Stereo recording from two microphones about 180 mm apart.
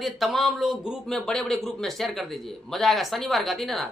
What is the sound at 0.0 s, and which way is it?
A man's voice, centre (ahead or behind).